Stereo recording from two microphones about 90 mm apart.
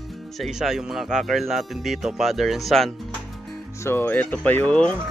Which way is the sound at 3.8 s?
25° left (ahead or behind).